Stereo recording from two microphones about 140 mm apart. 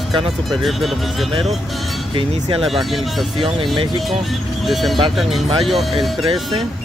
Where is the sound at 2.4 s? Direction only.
40° right (ahead or behind).